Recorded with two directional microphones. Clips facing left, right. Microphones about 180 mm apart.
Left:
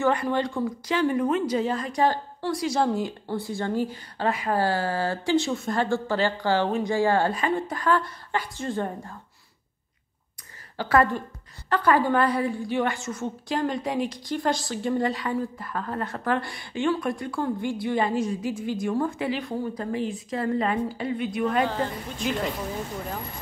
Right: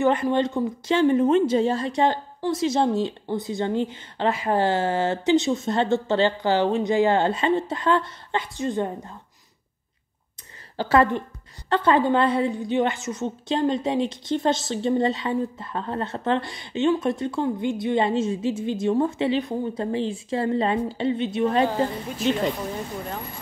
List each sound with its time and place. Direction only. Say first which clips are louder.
0.0 s a woman's voice: right 3 dB; 20° right (ahead or behind)
10.8 s a woman's voice: right 2 dB; 25° right (ahead or behind)